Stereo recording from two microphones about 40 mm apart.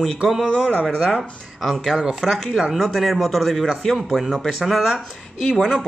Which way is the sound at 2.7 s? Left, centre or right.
Centre.